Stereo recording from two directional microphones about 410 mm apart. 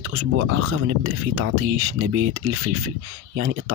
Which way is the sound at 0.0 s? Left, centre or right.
Right.